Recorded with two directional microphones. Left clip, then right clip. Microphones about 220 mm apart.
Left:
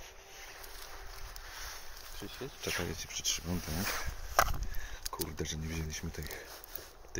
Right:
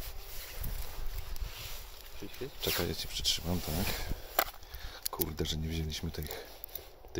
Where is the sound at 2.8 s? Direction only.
25° right (ahead or behind).